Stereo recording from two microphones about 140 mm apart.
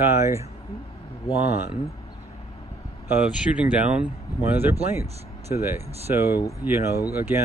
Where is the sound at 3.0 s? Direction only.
10° right (ahead or behind).